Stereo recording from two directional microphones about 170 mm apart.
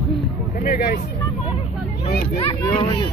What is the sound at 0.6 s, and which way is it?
Speech, 60° left (ahead or behind).